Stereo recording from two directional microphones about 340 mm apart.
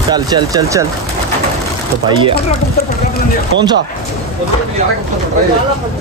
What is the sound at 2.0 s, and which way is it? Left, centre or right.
Speech, centre.